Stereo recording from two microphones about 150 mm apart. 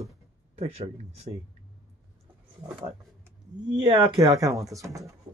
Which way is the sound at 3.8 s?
30° right (ahead or behind).